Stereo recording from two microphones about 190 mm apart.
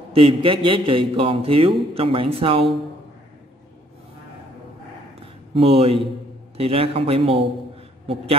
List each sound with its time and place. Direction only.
0.1 s a man's voice: 25° right (ahead or behind)
5.2 s a sound: 30° right (ahead or behind)
6.5 s a man's voice: 30° right (ahead or behind)